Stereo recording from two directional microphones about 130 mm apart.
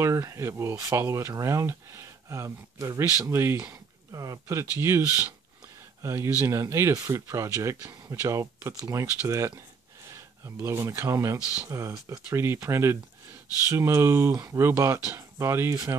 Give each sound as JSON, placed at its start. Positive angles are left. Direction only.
{"t": 0.0, "sound": "speech", "side_deg": -25}
{"t": 10.0, "sound": "speech", "side_deg": -20}